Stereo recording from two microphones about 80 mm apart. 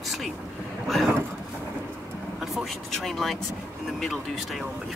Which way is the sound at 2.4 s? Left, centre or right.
Centre.